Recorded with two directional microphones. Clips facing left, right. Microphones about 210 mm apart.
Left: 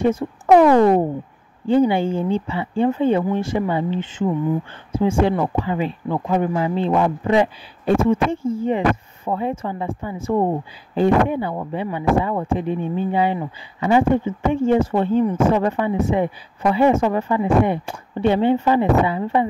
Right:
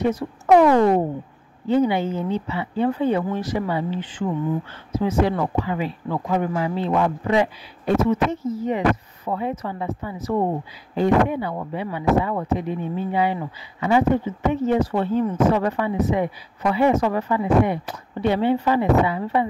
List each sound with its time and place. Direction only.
0.0 s a man's voice: 30° left (ahead or behind)